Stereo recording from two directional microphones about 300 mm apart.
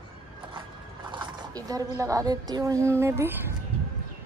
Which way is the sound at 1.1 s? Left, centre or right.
Centre.